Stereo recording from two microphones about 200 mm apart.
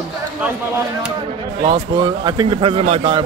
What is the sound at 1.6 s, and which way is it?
A man's voice, 25° right (ahead or behind).